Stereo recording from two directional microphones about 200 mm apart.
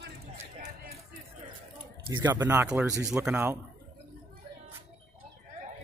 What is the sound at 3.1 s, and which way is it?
Speech, 5° right (ahead or behind).